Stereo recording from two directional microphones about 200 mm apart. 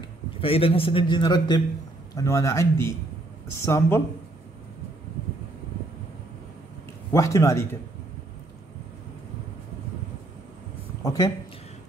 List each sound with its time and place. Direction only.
0.4 s a man's voice: 30° left (ahead or behind)
7.1 s a man's voice: 15° left (ahead or behind)
11.0 s speech: 20° left (ahead or behind)